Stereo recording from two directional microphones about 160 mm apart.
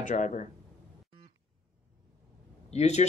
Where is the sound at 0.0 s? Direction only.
50° left (ahead or behind).